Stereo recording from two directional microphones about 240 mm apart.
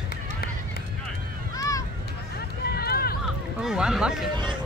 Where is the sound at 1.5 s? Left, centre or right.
Centre.